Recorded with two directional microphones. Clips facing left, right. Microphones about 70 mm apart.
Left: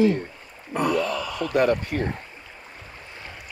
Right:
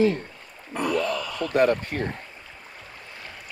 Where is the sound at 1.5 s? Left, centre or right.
Right.